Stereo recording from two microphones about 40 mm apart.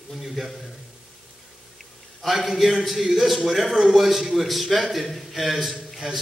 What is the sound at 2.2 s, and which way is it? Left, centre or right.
A man's voice, centre.